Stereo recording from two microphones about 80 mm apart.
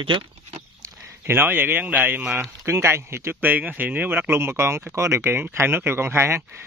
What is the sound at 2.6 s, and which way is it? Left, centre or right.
Speech, right.